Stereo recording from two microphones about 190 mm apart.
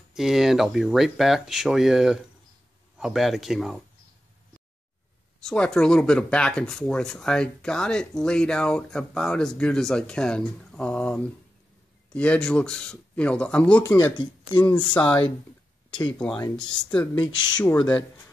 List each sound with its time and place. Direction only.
0.1 s speech: centre (ahead or behind)
5.4 s speech: 5° left (ahead or behind); by 14.3 s 20° left (ahead or behind)
14.7 s speech: 5° left (ahead or behind)
17.4 s speech: 25° left (ahead or behind)
17.6 s speech: 10° left (ahead or behind)